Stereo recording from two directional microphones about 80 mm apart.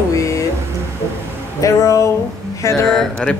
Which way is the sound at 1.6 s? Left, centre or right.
Left.